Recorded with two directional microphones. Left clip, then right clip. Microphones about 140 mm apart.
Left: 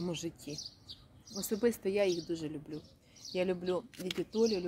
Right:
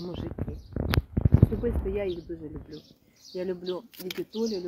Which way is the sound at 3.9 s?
50° right (ahead or behind).